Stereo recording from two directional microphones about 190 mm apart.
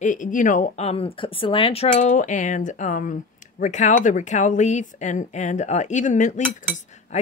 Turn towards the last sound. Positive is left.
turn(degrees=35)  # may be behind; listen again after turning